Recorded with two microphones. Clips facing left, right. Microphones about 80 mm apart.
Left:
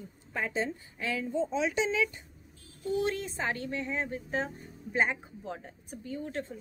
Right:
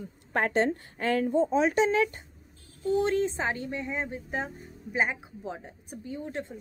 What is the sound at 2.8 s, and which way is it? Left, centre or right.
Speech, right.